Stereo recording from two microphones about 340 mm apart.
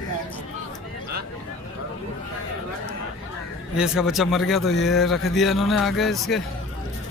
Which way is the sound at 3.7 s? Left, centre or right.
Centre.